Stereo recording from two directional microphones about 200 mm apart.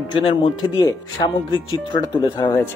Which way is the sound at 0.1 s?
25° left (ahead or behind).